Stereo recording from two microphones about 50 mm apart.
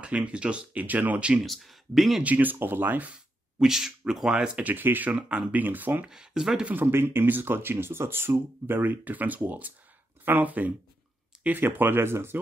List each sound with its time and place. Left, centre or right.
0.0 s speech: right
0.8 s speech: right
1.4 s speech: centre
2.2 s speech: right
3.6 s speech: centre
4.6 s speech: right
6.0 s speech: centre
6.7 s speech: right